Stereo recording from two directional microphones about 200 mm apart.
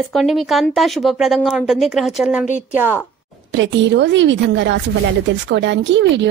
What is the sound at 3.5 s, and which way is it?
A woman's voice, 65° right (ahead or behind).